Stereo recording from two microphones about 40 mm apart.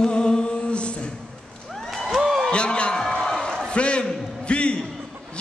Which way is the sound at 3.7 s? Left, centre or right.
Left.